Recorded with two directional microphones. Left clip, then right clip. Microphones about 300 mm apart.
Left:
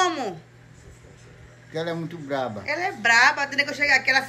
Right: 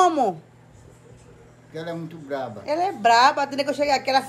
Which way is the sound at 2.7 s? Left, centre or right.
Centre.